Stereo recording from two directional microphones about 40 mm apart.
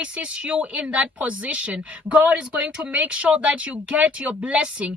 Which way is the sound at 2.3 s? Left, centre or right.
Right.